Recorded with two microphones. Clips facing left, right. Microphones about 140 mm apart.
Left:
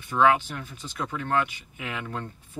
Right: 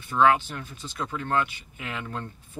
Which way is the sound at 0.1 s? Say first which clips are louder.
Even; 10° left (ahead or behind).